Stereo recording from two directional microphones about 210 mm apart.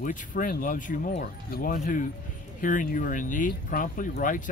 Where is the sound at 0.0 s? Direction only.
40° left (ahead or behind).